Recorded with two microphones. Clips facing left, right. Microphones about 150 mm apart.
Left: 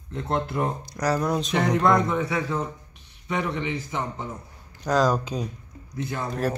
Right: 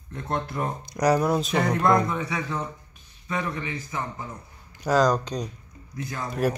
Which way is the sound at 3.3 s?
20° left (ahead or behind).